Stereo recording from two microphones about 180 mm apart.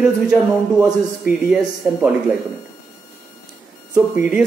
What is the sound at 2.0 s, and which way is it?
Speech, 5° right (ahead or behind).